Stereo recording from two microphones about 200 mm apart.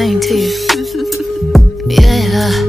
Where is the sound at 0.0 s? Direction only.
Centre (ahead or behind).